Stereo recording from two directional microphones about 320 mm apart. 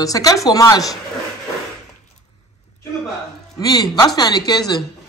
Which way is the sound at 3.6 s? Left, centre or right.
Centre.